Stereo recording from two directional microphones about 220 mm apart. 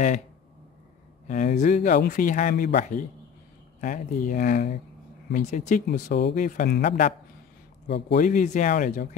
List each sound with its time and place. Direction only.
1.2 s speech: 30° left (ahead or behind)